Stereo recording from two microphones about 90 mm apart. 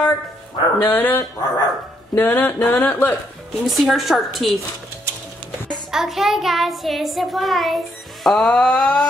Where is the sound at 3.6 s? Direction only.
Centre (ahead or behind).